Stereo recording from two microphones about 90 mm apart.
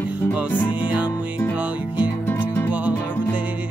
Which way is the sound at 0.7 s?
15° right (ahead or behind).